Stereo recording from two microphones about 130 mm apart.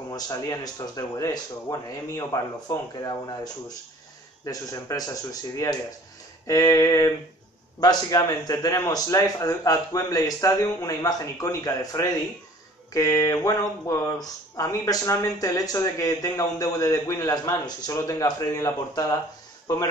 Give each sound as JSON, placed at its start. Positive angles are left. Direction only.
{"t": 0.1, "sound": "speech", "side_deg": 30}
{"t": 4.5, "sound": "speech", "side_deg": 30}